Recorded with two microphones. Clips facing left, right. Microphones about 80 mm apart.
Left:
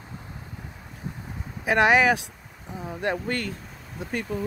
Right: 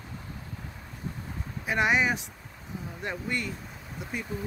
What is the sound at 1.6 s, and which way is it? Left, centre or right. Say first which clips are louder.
Speech: left 6 dB; left.